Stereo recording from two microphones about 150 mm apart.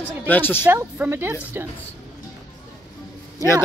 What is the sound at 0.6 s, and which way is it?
Speech, 10° right (ahead or behind).